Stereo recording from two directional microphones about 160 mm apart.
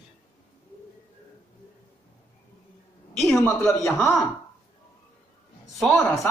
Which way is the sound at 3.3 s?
15° left (ahead or behind).